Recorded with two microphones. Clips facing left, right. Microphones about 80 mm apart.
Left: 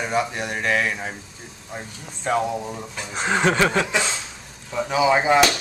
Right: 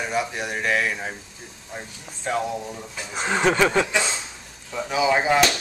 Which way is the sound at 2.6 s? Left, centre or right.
Centre.